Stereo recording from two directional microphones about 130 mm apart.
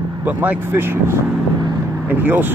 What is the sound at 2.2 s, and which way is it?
Speech, 15° right (ahead or behind).